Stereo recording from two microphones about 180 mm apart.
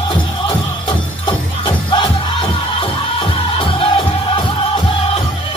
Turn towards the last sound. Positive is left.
turn(degrees=30)  # may be behind; listen again after turning